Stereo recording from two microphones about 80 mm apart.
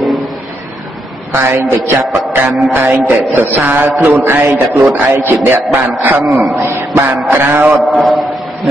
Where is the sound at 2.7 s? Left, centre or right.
Right.